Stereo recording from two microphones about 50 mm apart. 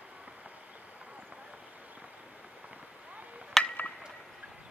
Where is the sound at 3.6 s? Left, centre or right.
Centre.